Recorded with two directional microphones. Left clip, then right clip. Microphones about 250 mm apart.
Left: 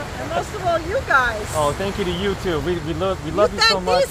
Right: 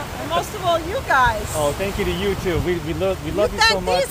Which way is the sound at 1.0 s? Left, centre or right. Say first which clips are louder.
Right 1 dB; right.